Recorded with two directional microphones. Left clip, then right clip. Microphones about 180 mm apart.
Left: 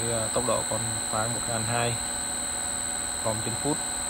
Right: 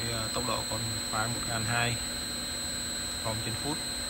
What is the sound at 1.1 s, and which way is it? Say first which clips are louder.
Speech: left 3 dB; 20° left (ahead or behind).